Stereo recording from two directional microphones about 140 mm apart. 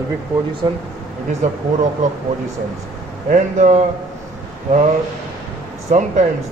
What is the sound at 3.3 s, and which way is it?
Speech, 55° right (ahead or behind).